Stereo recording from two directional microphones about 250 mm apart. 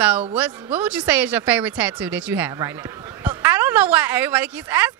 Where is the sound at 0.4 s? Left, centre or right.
Centre.